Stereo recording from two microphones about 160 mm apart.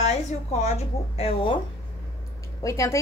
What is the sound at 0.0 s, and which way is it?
Speech, 40° left (ahead or behind).